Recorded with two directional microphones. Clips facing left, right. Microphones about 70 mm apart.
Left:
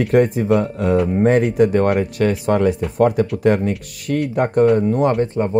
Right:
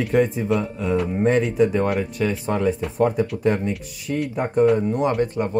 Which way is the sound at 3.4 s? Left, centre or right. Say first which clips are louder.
Left 5 dB; left.